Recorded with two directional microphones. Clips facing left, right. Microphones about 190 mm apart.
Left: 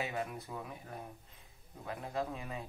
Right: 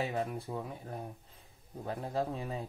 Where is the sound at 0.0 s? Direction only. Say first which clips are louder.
Right 4 dB; 35° right (ahead or behind).